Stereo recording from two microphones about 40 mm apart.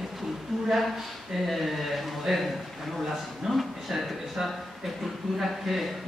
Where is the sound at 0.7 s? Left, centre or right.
Centre.